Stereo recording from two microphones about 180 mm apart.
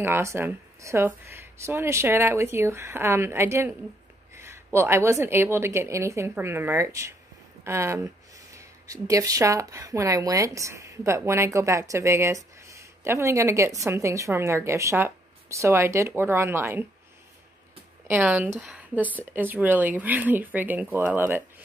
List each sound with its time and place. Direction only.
0.0 s speech: 15° right (ahead or behind)
18.0 s speech: 10° right (ahead or behind)